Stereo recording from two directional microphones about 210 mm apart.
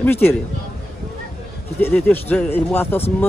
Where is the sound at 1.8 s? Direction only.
10° left (ahead or behind).